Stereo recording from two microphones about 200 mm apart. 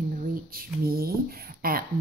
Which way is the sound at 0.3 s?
45° right (ahead or behind).